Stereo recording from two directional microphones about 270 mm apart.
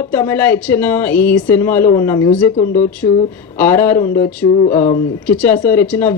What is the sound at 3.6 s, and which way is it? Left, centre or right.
Speech, centre.